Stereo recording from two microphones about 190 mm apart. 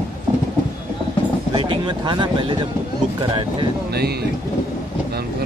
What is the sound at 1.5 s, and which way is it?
Speech, 25° right (ahead or behind).